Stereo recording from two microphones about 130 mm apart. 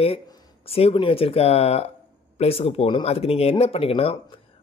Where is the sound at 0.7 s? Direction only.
50° left (ahead or behind).